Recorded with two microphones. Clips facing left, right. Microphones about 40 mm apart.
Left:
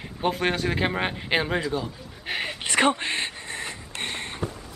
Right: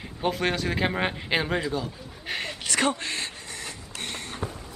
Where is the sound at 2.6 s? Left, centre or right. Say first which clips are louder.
Left 4 dB; left.